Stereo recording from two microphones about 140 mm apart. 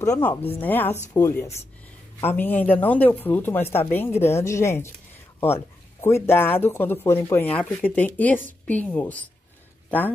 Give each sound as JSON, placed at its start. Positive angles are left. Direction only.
{"t": 0.1, "sound": "speech", "side_deg": 15}